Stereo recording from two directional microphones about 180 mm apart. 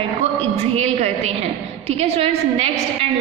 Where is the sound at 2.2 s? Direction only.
35° right (ahead or behind).